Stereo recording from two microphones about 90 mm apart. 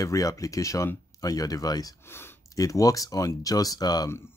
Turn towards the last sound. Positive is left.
turn(degrees=45)  # may be behind; listen again after turning